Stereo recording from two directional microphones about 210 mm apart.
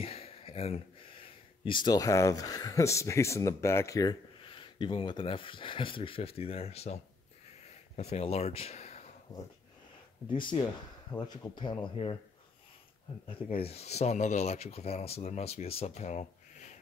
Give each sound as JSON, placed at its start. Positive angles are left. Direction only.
{"t": 0.0, "sound": "a sound", "side_deg": 30}
{"t": 1.6, "sound": "speech", "side_deg": 20}
{"t": 10.3, "sound": "speech", "side_deg": 20}
{"t": 13.3, "sound": "speech", "side_deg": 25}